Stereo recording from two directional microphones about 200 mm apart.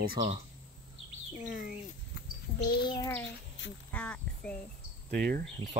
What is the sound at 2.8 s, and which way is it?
Speech, 20° left (ahead or behind).